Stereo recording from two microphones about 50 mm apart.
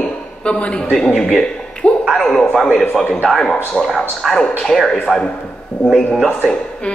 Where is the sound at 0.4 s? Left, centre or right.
Left.